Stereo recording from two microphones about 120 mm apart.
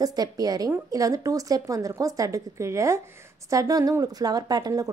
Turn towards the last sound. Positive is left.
turn(degrees=-30)  # may be behind; listen again after turning